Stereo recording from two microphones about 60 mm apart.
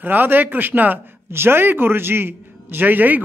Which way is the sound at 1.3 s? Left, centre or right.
Right.